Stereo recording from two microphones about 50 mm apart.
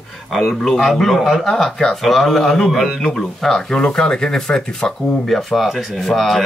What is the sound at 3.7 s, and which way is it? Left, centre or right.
Speech, centre.